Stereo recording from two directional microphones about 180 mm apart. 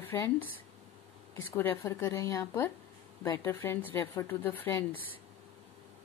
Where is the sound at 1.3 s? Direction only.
10° left (ahead or behind).